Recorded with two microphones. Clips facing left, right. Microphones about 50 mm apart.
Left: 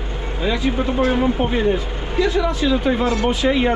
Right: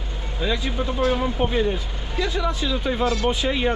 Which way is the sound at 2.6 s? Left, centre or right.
Left.